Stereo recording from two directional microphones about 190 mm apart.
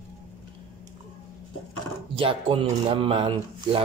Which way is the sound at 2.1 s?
30° right (ahead or behind).